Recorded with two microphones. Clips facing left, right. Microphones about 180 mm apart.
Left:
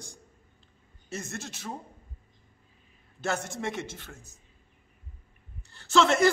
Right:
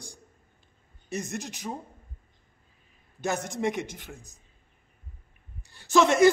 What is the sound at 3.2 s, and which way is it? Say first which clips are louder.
Speech: right 3 dB; 15° right (ahead or behind).